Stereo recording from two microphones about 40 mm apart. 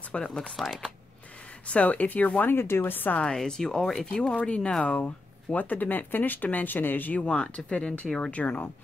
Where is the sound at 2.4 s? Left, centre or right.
Left.